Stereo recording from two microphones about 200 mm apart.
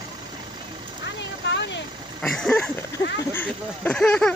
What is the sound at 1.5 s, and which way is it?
Vehicle, 60° left (ahead or behind).